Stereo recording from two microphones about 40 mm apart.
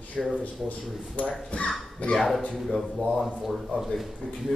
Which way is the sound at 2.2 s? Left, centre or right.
Centre.